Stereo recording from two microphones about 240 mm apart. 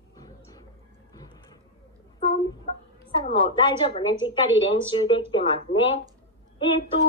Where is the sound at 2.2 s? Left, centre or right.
Left.